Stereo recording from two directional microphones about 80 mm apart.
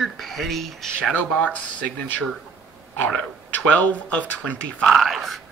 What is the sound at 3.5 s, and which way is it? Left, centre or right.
Speech, centre.